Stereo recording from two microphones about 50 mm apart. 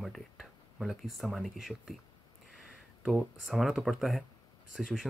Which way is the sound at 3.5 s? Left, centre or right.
Centre.